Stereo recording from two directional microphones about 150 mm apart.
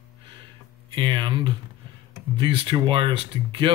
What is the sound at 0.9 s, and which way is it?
Speech, 30° right (ahead or behind).